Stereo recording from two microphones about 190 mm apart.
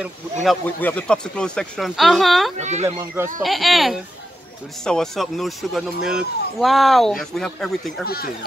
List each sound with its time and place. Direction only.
0.0 s speech: centre (ahead or behind)
2.5 s speech: 35° right (ahead or behind)
3.4 s speech: centre (ahead or behind)
8.0 s speech: 55° left (ahead or behind)